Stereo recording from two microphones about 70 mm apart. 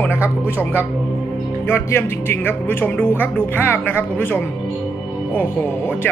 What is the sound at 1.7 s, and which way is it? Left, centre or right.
Speech, left.